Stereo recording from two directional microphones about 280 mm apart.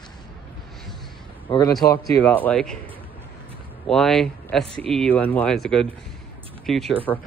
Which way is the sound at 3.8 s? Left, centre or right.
Centre.